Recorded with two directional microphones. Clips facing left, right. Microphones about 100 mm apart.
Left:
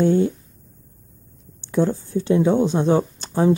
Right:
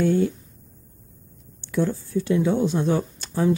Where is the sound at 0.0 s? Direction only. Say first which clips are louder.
Left 3 dB; 25° left (ahead or behind).